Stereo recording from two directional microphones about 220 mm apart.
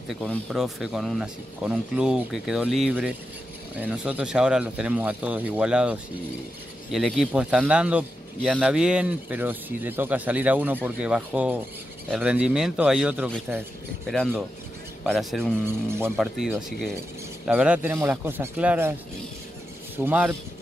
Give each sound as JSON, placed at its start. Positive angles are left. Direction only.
{"t": 0.1, "sound": "speech", "side_deg": 0}
{"t": 14.0, "sound": "speech", "side_deg": 5}
{"t": 15.6, "sound": "speech", "side_deg": -10}
{"t": 20.1, "sound": "speech", "side_deg": -10}